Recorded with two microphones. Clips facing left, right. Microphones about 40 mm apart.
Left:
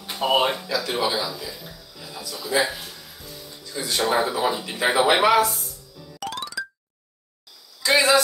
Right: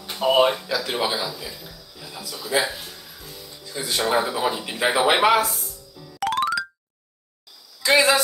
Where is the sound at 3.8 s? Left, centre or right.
Centre.